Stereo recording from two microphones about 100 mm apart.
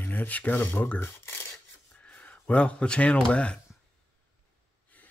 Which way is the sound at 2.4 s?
10° left (ahead or behind).